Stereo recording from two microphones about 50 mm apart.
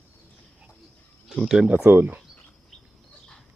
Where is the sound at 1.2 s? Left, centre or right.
Centre.